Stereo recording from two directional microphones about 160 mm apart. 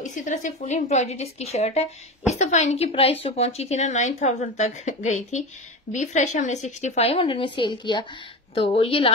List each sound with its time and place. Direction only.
0.0 s a woman's voice: 50° left (ahead or behind); by 9.1 s 35° left (ahead or behind)